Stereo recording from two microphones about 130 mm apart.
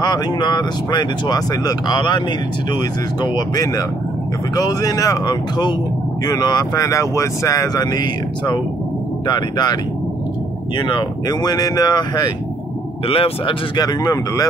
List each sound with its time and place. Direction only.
0.0 s speech: 30° left (ahead or behind)
9.3 s speech: 35° left (ahead or behind)
10.8 s speech: 35° left (ahead or behind)
13.0 s speech: 45° left (ahead or behind)
13.7 s speech: 30° left (ahead or behind)